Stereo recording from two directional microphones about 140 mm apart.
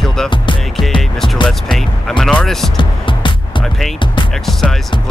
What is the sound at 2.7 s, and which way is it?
Music, 35° left (ahead or behind).